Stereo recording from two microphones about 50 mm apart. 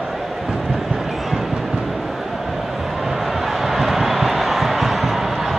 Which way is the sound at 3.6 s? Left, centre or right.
Centre.